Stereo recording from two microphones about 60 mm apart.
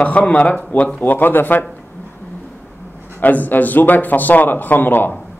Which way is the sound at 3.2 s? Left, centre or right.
Left.